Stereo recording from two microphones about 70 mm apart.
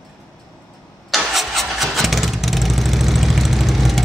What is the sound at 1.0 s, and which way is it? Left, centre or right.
Vehicle, centre.